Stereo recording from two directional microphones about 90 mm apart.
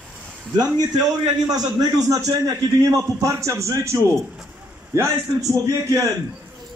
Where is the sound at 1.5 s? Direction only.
45° right (ahead or behind).